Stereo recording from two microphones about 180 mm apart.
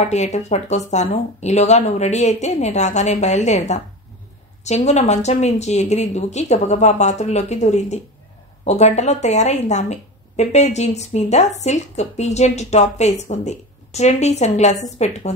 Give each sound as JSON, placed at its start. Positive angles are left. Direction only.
{"t": 0.0, "sound": "a woman's voice", "side_deg": 40}